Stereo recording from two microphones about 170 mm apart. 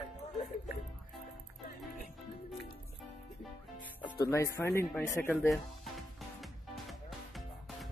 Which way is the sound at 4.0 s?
15° left (ahead or behind).